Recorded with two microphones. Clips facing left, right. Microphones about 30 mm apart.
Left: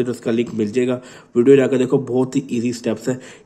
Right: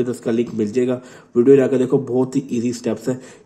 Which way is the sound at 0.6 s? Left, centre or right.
Left.